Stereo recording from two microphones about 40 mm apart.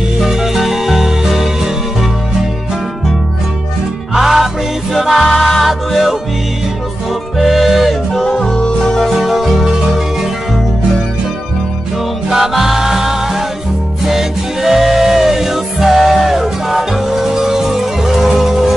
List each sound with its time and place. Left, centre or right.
0.2 s music: centre
4.1 s music: centre
7.3 s music: centre
8.1 s music: centre
8.4 s music: left
9.1 s music: centre
12.3 s music: centre